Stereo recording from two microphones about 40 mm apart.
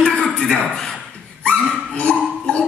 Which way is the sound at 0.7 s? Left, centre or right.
Centre.